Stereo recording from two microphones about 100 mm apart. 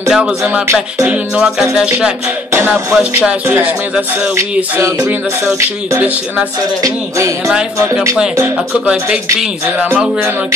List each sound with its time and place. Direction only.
0.1 s music: 5° right (ahead or behind)
2.5 s music: 20° right (ahead or behind)
2.9 s speech: 10° right (ahead or behind)
5.9 s speech: 15° right (ahead or behind)
6.8 s music: 35° right (ahead or behind)
8.8 s speech: 10° right (ahead or behind)